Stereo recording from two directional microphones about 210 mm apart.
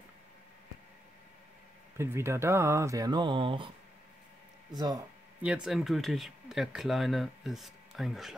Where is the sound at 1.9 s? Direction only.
10° right (ahead or behind).